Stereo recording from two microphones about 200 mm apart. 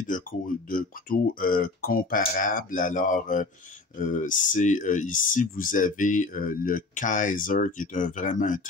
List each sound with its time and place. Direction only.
0.7 s speech: 45° left (ahead or behind)